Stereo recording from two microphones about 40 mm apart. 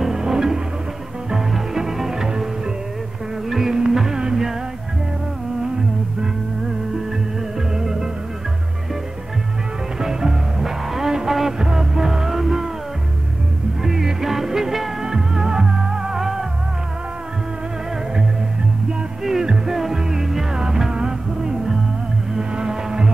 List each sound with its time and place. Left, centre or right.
0.0 s music: centre
7.7 s music: centre
9.9 s music: centre
13.8 s music: centre
19.4 s music: centre
22.3 s a sound: centre